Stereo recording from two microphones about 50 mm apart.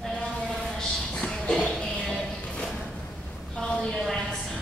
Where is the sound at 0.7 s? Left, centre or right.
Centre.